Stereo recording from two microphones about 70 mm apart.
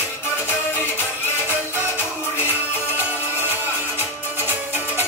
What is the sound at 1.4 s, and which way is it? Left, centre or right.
Music, right.